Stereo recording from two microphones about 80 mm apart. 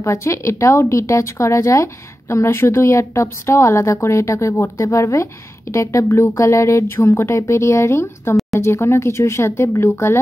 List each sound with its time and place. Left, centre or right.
0.0 s speech: left